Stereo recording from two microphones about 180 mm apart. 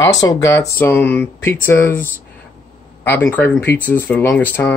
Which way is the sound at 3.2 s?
5° left (ahead or behind).